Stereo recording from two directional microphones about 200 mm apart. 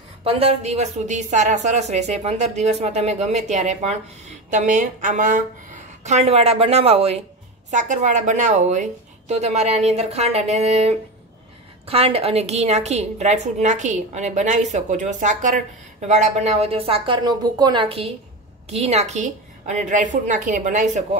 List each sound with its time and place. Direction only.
0.2 s a woman's voice: 30° right (ahead or behind)